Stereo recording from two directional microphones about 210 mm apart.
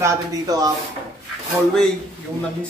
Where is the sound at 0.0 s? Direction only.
15° right (ahead or behind).